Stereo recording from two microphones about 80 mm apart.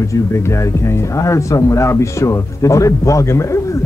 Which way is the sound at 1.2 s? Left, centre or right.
Left.